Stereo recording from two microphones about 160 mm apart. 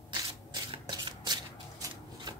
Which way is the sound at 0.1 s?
30° right (ahead or behind).